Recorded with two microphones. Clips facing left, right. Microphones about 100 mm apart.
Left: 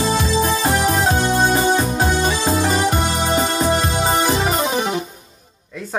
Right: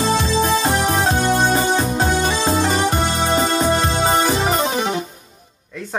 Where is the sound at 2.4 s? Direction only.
25° right (ahead or behind).